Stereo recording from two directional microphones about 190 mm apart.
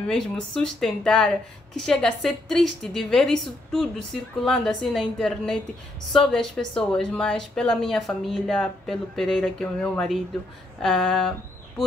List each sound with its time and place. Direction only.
0.0 s a woman's voice: 5° left (ahead or behind)